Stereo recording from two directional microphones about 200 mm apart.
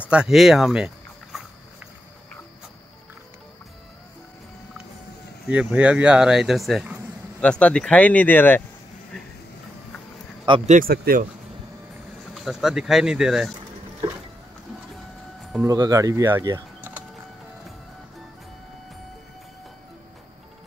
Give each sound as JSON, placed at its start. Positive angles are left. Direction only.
{"t": 0.0, "sound": "speech", "side_deg": -5}
{"t": 5.5, "sound": "speech", "side_deg": -5}
{"t": 10.7, "sound": "speech", "side_deg": -45}
{"t": 12.4, "sound": "speech", "side_deg": 0}
{"t": 15.6, "sound": "speech", "side_deg": -15}